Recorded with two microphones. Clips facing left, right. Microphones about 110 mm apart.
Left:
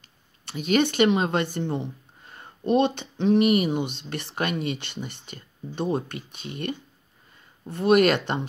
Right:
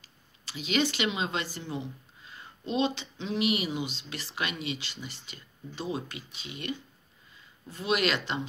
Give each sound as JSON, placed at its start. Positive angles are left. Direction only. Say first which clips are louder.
{"t": 0.5, "sound": "speech", "louder": "left 6 dB", "side_deg": 55}